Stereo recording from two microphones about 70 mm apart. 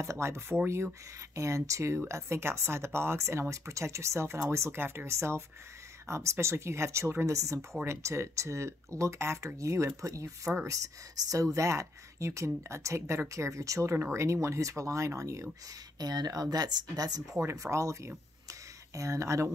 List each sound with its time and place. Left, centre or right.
0.0 s speech: right
11.5 s speech: right
16.0 s speech: right
17.5 s speech: right